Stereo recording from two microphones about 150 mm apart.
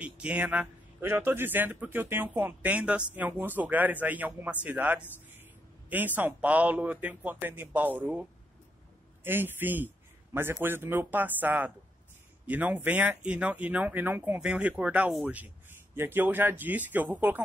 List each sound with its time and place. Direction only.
0.0 s speech: 10° right (ahead or behind)